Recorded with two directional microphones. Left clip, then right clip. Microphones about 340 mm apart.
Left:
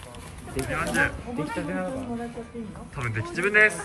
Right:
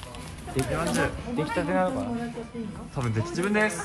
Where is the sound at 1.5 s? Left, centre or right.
Right.